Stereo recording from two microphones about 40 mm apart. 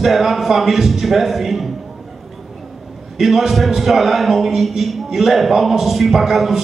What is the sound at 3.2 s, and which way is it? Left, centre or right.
A man's voice, centre.